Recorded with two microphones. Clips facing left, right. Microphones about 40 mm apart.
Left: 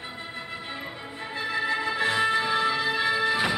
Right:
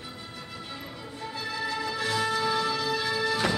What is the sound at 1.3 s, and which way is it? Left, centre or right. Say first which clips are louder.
Music: left 5 dB; left.